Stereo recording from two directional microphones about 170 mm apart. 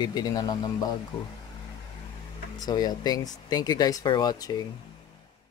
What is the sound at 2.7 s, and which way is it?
Speech, 25° left (ahead or behind).